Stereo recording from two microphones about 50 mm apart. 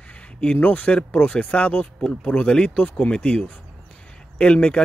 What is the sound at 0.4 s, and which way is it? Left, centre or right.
Speech, left.